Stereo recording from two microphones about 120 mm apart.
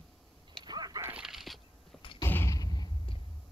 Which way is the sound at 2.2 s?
20° left (ahead or behind).